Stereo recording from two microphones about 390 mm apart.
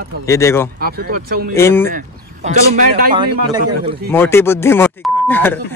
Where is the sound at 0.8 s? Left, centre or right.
Right.